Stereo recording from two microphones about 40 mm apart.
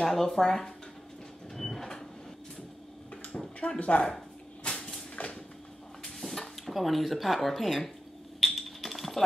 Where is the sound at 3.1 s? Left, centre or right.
Left.